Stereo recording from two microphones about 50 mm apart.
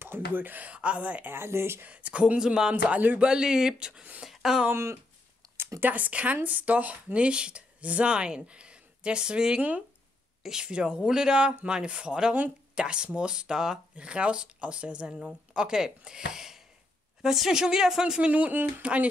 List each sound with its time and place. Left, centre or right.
0.0 s speech: right
1.3 s speech: right
1.9 s speech: right
2.7 s speech: right
3.2 s speech: centre
5.8 s speech: right; by 9.6 s centre
9.6 s speech: right
10.4 s speech: centre
18.2 s speech: right